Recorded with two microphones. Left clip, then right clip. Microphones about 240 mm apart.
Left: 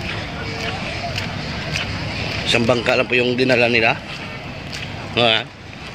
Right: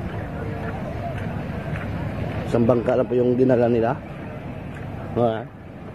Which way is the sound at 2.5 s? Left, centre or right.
Centre.